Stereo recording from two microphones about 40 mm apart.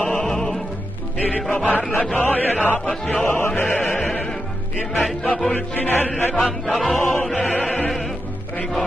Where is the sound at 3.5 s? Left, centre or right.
Left.